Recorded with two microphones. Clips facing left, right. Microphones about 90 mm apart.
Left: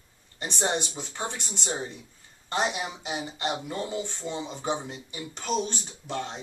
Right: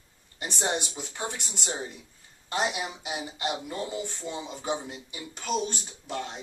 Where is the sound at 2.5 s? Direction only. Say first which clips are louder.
Left 1 dB; 5° right (ahead or behind).